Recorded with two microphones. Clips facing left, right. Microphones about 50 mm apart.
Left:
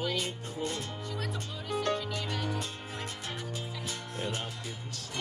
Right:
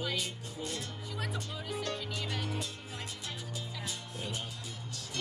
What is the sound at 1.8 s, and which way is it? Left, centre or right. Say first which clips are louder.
Music: left 8 dB; left.